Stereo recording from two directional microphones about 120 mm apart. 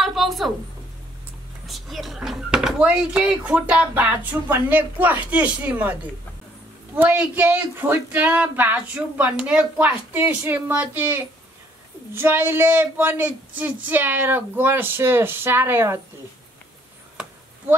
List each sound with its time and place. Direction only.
0.0 s a sound: centre (ahead or behind)
1.7 s speech: centre (ahead or behind)
7.0 s speech: 15° right (ahead or behind)